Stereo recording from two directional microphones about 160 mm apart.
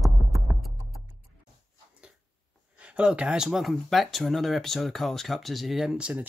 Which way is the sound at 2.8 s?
5° right (ahead or behind).